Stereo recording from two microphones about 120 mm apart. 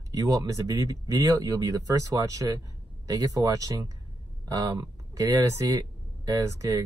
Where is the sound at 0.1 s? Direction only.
30° right (ahead or behind).